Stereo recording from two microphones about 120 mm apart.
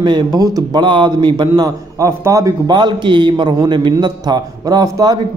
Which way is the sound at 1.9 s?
25° right (ahead or behind).